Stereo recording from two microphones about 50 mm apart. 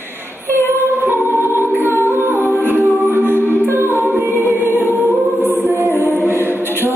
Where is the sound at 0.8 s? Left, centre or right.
Right.